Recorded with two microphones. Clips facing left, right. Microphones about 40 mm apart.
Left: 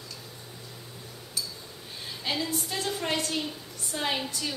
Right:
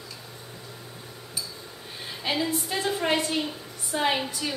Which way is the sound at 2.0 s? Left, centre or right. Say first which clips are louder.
Right 4 dB; centre.